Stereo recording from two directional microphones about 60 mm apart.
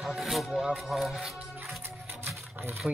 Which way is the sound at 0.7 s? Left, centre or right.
Centre.